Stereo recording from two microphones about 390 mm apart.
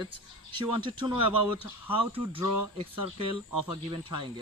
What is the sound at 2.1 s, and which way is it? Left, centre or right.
Speech, centre.